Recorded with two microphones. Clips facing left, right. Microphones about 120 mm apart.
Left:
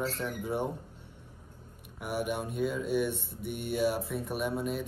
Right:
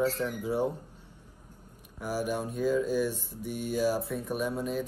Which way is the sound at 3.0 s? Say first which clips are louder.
Right 1 dB; 60° left (ahead or behind).